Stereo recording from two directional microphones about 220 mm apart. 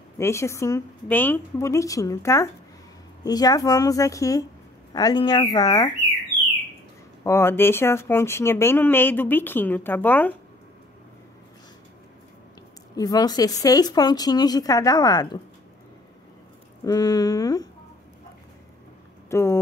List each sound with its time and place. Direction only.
0.2 s speech: 10° left (ahead or behind)
7.2 s speech: 10° left (ahead or behind)
12.9 s speech: 15° left (ahead or behind)
16.8 s speech: 15° left (ahead or behind)
19.3 s speech: 10° left (ahead or behind)